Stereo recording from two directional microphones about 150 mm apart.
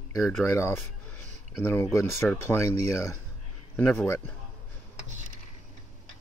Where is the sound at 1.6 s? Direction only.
15° left (ahead or behind).